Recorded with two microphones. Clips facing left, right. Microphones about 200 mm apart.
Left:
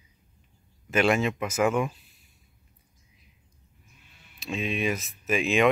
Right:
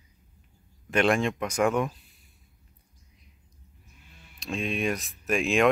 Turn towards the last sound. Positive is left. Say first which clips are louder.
# even
turn(degrees=0)  # may be behind; listen again after turning